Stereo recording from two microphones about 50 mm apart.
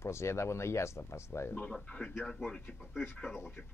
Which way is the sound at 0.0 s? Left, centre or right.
Left.